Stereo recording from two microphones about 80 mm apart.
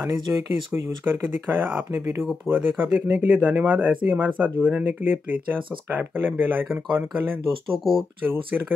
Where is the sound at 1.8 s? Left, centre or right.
Right.